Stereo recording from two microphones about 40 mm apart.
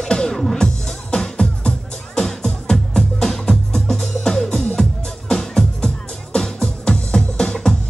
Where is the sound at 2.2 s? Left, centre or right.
Centre.